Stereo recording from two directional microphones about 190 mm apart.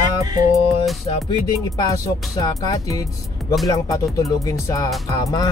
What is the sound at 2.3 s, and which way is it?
Speech, 20° left (ahead or behind).